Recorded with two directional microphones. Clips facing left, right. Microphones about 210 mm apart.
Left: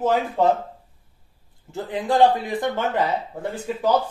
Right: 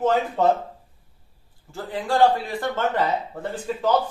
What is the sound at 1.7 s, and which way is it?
Speech, 20° left (ahead or behind).